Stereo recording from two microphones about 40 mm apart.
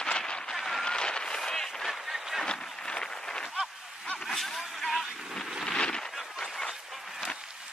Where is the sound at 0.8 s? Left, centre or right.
Left.